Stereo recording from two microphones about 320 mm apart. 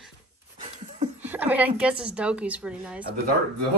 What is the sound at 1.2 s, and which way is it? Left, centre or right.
A woman's voice, centre.